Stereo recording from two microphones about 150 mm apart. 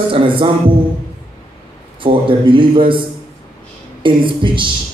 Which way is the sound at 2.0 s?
35° right (ahead or behind).